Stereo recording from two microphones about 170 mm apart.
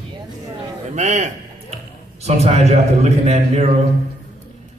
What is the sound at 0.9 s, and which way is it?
A man's voice, 45° right (ahead or behind).